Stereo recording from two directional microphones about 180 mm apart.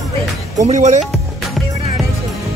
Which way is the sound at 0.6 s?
40° right (ahead or behind).